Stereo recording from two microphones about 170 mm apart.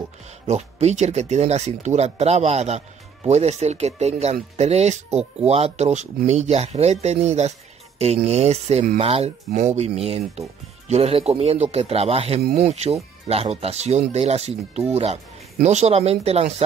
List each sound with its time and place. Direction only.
0.5 s speech: 40° right (ahead or behind)